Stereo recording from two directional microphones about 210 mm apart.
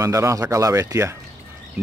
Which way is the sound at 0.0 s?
15° right (ahead or behind).